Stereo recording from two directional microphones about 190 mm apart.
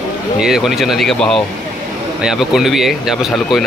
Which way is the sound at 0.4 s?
Centre (ahead or behind).